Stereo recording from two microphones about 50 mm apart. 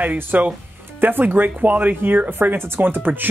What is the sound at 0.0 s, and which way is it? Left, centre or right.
Speech, right.